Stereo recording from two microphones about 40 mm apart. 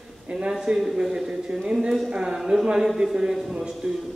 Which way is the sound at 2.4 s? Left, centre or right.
Centre.